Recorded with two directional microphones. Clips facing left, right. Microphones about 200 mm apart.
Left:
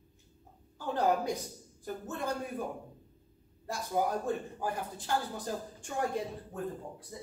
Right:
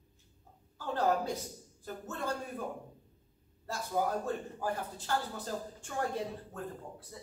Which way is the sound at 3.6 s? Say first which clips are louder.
Left 1 dB; 15° left (ahead or behind).